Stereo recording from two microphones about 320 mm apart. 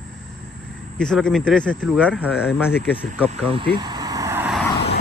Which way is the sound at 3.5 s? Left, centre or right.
Centre.